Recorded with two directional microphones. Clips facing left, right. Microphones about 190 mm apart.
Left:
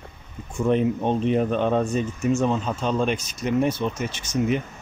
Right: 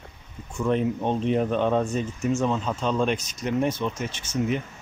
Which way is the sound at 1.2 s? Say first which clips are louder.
Even; 5° left (ahead or behind).